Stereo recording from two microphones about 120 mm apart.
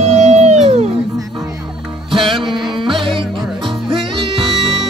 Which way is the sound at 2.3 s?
45° right (ahead or behind).